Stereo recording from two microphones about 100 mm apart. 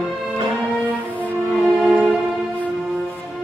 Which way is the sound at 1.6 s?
15° right (ahead or behind).